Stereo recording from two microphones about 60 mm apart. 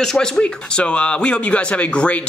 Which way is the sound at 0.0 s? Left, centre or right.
Centre.